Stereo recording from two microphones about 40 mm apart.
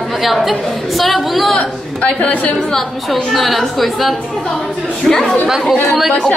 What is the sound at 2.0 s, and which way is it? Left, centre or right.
Speech, left.